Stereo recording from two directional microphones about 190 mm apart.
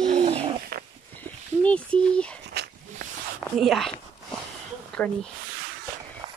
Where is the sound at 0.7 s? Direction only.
50° right (ahead or behind).